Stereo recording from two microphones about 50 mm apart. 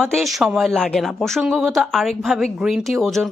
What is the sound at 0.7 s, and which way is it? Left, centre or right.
Speech, centre.